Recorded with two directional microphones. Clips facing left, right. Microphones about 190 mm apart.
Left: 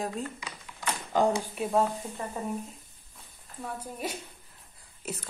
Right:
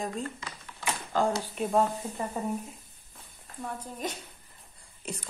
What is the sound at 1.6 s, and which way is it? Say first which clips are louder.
Speech: right 2 dB; centre (ahead or behind).